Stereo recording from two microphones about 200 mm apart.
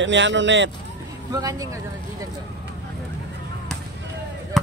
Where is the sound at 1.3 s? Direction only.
15° right (ahead or behind).